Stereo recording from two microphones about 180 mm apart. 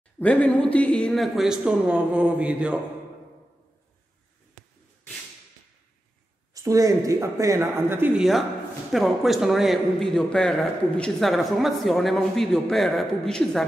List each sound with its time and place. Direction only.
0.2 s a man's voice: 10° left (ahead or behind)
6.5 s a man's voice: 20° right (ahead or behind); by 13.7 s centre (ahead or behind)